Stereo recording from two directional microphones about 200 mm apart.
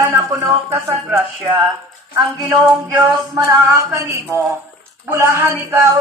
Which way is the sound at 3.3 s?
15° right (ahead or behind).